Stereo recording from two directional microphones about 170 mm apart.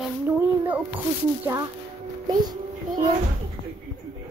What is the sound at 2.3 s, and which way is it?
Speech, 25° right (ahead or behind).